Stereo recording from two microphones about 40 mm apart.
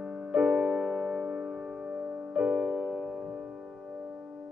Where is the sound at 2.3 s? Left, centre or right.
Centre.